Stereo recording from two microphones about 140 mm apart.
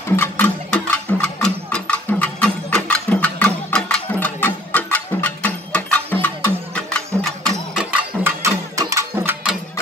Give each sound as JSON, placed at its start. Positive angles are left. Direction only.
{"t": 0.1, "sound": "music", "side_deg": 15}
{"t": 0.7, "sound": "a sound", "side_deg": 5}
{"t": 6.2, "sound": "music", "side_deg": 10}
{"t": 8.2, "sound": "music", "side_deg": -20}